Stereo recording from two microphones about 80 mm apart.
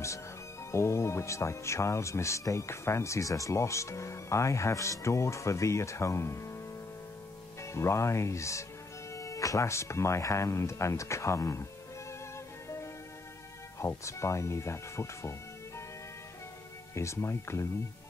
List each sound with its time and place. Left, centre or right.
0.7 s speech: left
7.6 s speech: left
12.6 s music: left
13.7 s speech: left
16.9 s speech: left